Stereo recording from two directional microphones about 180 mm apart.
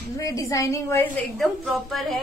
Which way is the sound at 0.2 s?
20° left (ahead or behind).